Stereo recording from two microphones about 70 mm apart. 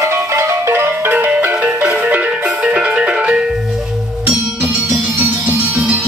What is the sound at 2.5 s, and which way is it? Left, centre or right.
Music, centre.